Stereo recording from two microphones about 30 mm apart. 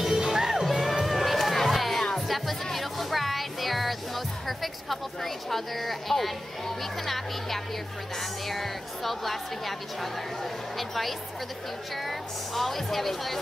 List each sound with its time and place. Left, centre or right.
0.1 s crowd: centre
0.7 s music: centre
7.1 s speech: centre
10.8 s speech: centre